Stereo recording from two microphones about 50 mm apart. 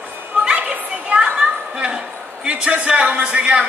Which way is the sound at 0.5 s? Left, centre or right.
Right.